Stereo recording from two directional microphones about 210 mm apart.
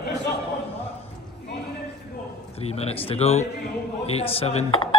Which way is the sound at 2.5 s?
30° left (ahead or behind).